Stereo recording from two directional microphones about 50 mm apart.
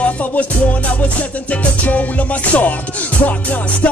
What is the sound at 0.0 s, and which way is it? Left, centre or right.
Music, left.